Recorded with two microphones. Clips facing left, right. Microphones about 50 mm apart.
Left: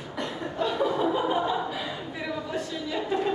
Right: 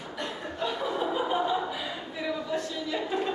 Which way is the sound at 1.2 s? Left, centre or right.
Centre.